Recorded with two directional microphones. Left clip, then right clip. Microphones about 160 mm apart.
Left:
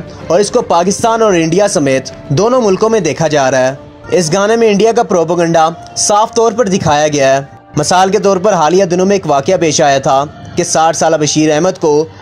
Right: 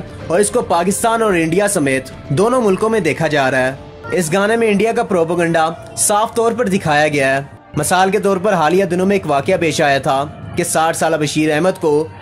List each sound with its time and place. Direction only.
0.6 s speech: 30° left (ahead or behind)